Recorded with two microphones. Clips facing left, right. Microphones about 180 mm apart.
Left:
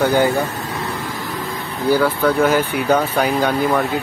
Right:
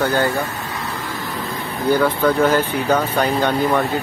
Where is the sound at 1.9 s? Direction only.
5° left (ahead or behind).